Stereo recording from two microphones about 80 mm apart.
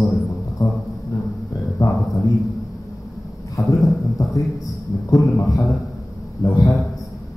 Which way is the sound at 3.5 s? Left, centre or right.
Left.